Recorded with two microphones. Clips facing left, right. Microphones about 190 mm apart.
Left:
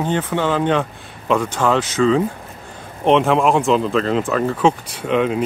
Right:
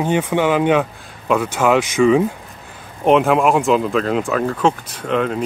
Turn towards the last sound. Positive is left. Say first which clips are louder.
# left 1 dB
turn(degrees=5)  # may be behind; listen again after turning